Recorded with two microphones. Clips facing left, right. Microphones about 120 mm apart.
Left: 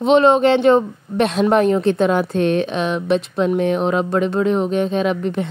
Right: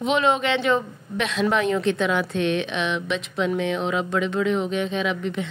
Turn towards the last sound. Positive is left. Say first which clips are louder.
# left 6 dB
turn(degrees=45)  # may be behind; listen again after turning